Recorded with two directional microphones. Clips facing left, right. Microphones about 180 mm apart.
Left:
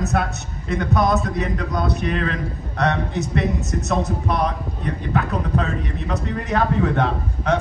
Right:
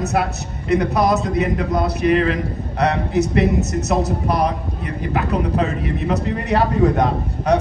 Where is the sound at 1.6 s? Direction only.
20° right (ahead or behind).